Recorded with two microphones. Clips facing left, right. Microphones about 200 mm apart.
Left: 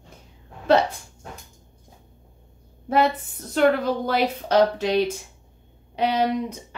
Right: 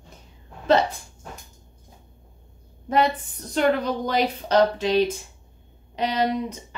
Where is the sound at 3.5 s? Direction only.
5° left (ahead or behind).